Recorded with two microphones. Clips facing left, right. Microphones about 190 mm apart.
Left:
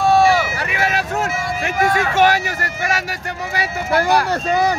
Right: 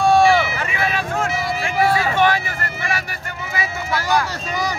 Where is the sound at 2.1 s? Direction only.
40° left (ahead or behind).